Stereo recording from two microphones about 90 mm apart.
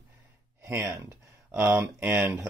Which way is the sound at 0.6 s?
35° right (ahead or behind).